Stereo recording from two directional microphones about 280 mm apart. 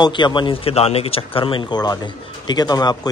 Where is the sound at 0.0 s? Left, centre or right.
Centre.